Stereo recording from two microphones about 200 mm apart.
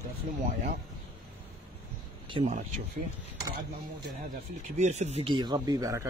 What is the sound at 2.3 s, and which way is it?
Speech, 30° right (ahead or behind).